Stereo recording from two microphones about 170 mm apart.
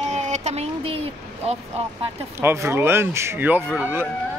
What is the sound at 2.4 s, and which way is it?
Speech, 15° right (ahead or behind).